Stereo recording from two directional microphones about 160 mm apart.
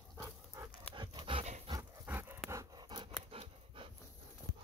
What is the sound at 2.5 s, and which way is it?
Pant, 25° right (ahead or behind).